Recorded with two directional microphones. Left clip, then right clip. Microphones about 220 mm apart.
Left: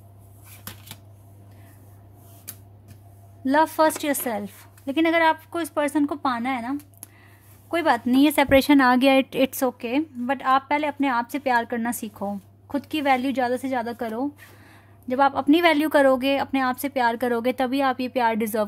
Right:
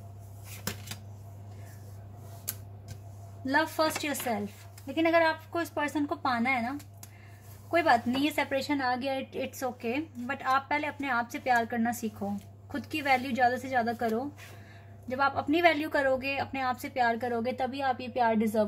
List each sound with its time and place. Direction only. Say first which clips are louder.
3.4 s a woman's voice: left 8 dB; 45° left (ahead or behind)
7.7 s a woman's voice: left 4 dB; 50° left (ahead or behind)